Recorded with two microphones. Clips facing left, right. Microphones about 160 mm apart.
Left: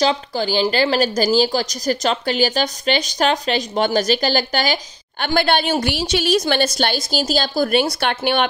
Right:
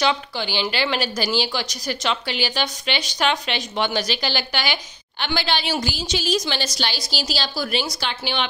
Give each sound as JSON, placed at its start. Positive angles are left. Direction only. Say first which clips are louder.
{"t": 0.0, "sound": "speech", "louder": "left 4 dB", "side_deg": 40}
{"t": 5.2, "sound": "speech", "louder": "left 6 dB", "side_deg": 55}